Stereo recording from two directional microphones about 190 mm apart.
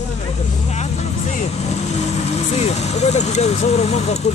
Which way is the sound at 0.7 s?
35° left (ahead or behind).